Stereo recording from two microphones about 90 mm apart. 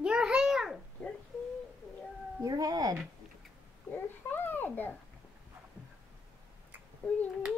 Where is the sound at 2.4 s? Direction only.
45° right (ahead or behind).